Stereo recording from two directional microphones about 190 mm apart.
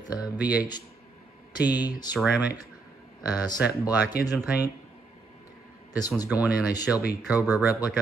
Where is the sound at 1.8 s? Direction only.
20° left (ahead or behind).